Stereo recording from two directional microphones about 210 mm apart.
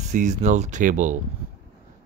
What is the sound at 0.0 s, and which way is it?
Speech, 35° right (ahead or behind).